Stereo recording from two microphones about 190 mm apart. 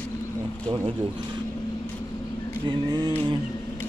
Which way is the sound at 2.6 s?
20° right (ahead or behind).